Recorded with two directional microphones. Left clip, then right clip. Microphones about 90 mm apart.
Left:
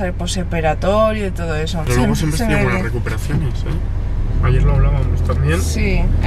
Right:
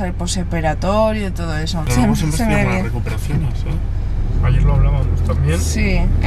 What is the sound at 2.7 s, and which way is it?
Speech, 20° left (ahead or behind).